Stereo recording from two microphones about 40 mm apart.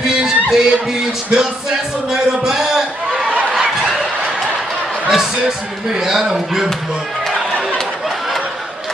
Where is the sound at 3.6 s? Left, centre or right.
Centre.